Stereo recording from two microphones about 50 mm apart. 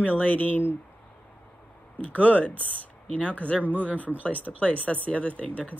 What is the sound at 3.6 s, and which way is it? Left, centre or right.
Speech, right.